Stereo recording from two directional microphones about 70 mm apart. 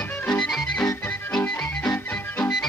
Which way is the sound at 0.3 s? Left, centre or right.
Centre.